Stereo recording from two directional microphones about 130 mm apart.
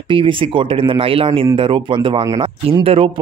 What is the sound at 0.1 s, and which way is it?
Speech, 40° right (ahead or behind).